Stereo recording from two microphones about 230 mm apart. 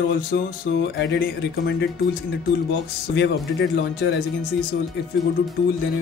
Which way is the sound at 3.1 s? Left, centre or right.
Left.